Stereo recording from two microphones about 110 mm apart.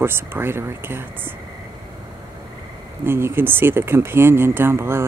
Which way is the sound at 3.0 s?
20° right (ahead or behind).